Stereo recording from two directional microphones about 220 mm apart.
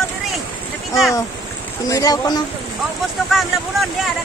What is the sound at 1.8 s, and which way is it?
Speech, 15° left (ahead or behind).